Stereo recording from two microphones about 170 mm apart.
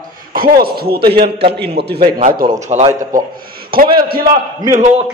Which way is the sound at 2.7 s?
45° right (ahead or behind).